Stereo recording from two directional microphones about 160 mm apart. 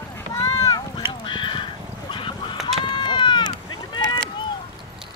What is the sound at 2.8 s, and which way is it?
Run, 30° left (ahead or behind).